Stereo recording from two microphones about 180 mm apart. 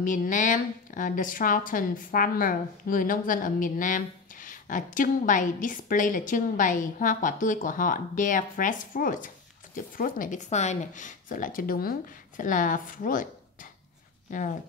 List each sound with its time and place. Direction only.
0.0 s a woman's voice: 45° left (ahead or behind)